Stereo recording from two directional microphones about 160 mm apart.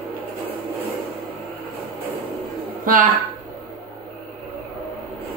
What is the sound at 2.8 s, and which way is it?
Speech, 60° right (ahead or behind).